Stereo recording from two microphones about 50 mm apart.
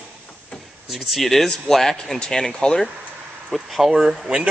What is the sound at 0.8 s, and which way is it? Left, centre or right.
Speech, centre.